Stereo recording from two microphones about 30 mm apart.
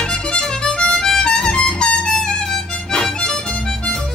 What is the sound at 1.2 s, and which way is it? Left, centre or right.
Music, left.